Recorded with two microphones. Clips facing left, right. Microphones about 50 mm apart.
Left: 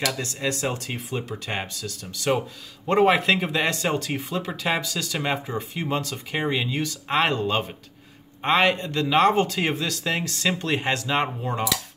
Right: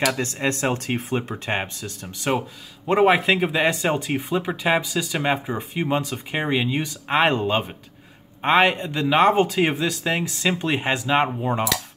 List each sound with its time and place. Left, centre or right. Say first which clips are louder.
0.1 s speech: right 4 dB; right
2.9 s speech: right 2 dB; centre